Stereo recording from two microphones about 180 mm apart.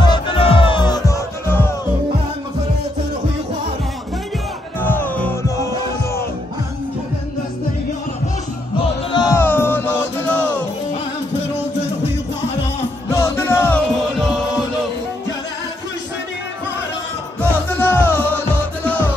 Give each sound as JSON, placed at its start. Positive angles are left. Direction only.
{"t": 0.0, "sound": "music", "side_deg": 25}
{"t": 4.7, "sound": "music", "side_deg": 10}
{"t": 9.1, "sound": "music", "side_deg": 20}
{"t": 13.1, "sound": "music", "side_deg": 15}
{"t": 17.4, "sound": "music", "side_deg": 10}